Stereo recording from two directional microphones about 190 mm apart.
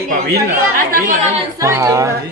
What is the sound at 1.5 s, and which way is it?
Speech, 15° right (ahead or behind).